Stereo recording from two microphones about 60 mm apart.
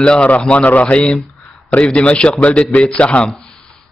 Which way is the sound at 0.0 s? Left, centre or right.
Centre.